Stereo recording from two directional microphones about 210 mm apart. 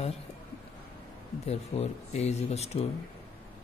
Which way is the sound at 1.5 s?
30° left (ahead or behind).